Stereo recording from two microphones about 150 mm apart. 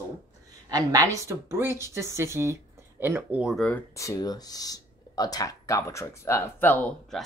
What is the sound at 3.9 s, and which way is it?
Speech, 25° left (ahead or behind).